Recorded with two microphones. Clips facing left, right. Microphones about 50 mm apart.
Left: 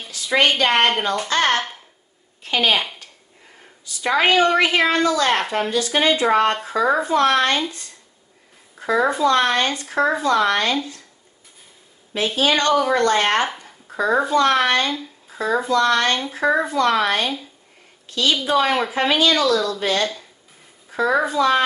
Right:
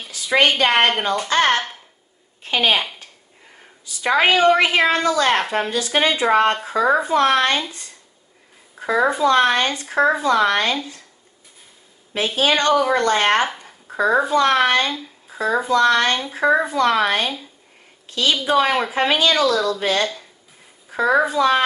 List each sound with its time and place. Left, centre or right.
0.3 s speech: centre
1.3 s a woman's voice: centre
4.0 s speech: centre
8.8 s speech: centre
12.4 s speech: right
18.0 s a woman's voice: right